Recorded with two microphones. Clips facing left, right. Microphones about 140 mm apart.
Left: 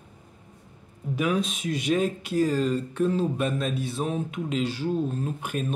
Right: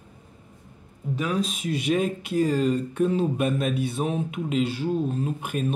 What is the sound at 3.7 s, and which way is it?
Mantra, 55° right (ahead or behind).